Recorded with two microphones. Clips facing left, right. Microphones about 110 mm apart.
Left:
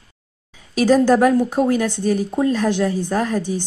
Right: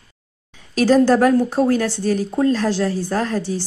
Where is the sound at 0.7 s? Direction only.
10° left (ahead or behind).